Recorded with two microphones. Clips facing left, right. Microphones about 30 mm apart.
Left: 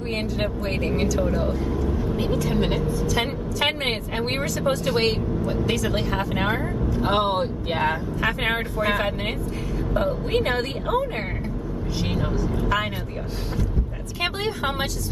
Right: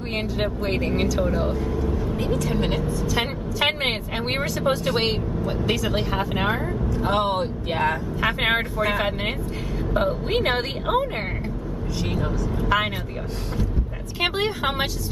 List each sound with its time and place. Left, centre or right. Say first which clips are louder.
0.1 s speech: right 1 dB; centre
2.1 s speech: left 1 dB; centre
3.1 s speech: even; centre
6.9 s speech: left 1 dB; centre
8.2 s speech: right 3 dB; centre
9.9 s a woman's voice: even; centre
12.0 s speech: even; centre
14.2 s a woman's voice: right 2 dB; centre